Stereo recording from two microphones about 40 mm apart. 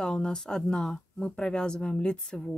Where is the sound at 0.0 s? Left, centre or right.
Left.